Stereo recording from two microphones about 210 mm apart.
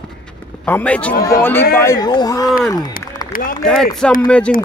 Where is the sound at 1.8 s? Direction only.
15° left (ahead or behind).